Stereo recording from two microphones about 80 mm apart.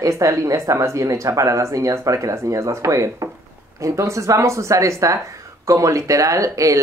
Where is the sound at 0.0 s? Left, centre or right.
Right.